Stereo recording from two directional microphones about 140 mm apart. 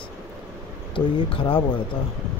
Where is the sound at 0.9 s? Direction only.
40° left (ahead or behind).